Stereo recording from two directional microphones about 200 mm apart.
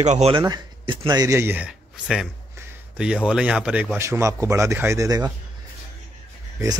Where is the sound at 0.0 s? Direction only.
35° right (ahead or behind).